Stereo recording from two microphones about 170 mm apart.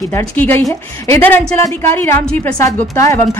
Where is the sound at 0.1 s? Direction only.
15° left (ahead or behind).